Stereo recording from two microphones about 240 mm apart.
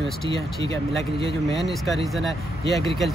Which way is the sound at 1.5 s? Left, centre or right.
Centre.